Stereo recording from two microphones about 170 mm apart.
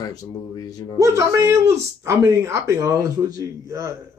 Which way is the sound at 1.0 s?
15° right (ahead or behind).